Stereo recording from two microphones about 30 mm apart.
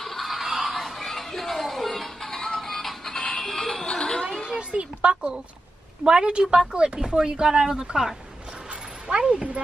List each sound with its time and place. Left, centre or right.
0.0 s music: centre
0.7 s music: centre
3.8 s a sound: left
4.6 s a child's voice: right
6.0 s a woman's voice: right
9.0 s speech: right